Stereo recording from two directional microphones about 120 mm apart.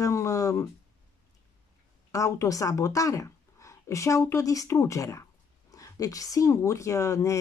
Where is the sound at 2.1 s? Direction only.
25° left (ahead or behind).